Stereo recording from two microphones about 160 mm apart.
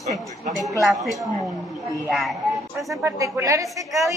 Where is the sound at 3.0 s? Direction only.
20° right (ahead or behind).